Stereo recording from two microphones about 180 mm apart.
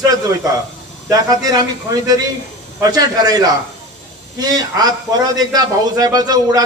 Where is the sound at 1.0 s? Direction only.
20° right (ahead or behind).